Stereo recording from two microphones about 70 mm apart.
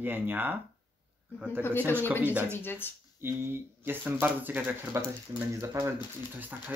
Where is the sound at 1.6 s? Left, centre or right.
Left.